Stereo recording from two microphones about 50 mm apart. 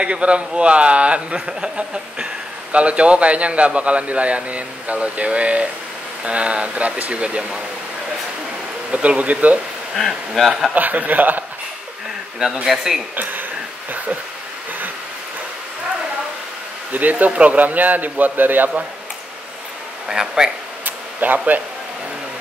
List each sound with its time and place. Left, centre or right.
0.0 s a man's voice: right
8.9 s a man's voice: right
9.9 s speech: centre
10.7 s a man's voice: right
12.7 s speech: centre
13.1 s a man's voice: right
16.9 s a man's voice: right
20.1 s speech: centre
20.8 s a sound: right